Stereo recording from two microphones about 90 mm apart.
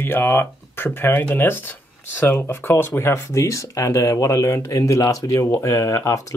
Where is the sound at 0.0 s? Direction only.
25° left (ahead or behind).